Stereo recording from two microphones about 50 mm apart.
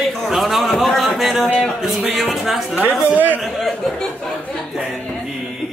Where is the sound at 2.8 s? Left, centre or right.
Right.